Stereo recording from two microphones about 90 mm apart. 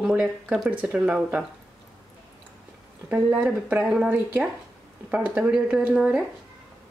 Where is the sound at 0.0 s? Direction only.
10° right (ahead or behind).